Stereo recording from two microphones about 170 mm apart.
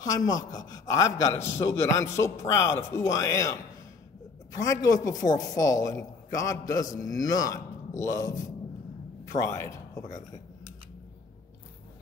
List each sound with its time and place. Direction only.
0.0 s a man's voice: 20° left (ahead or behind)
4.6 s a man's voice: 20° left (ahead or behind)